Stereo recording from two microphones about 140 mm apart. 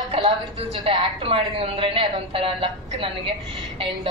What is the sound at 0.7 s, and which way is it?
A woman's voice, 35° right (ahead or behind).